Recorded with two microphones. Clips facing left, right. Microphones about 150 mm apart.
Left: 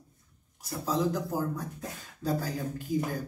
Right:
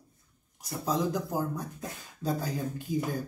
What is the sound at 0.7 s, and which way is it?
Speech, 15° right (ahead or behind).